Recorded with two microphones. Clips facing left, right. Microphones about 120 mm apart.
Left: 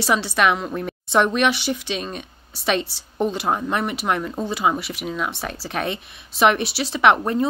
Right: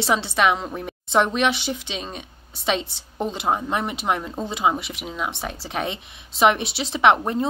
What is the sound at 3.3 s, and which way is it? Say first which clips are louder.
A woman's voice: left 1 dB; 20° right (ahead or behind).